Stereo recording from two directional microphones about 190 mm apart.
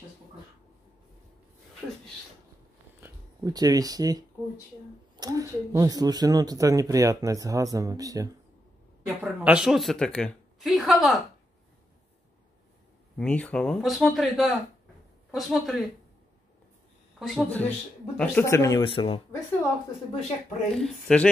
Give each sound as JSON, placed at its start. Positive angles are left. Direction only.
{"t": 3.0, "sound": "speech", "side_deg": -20}
{"t": 5.2, "sound": "speech", "side_deg": -20}
{"t": 9.0, "sound": "speech", "side_deg": -5}
{"t": 13.2, "sound": "speech", "side_deg": 10}
{"t": 17.2, "sound": "speech", "side_deg": 0}
{"t": 18.9, "sound": "speech", "side_deg": 30}
{"t": 20.7, "sound": "speech", "side_deg": 5}